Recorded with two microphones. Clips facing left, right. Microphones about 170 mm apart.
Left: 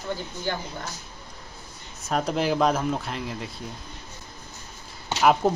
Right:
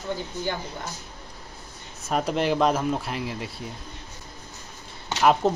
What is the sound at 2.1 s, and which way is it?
Speech, centre (ahead or behind).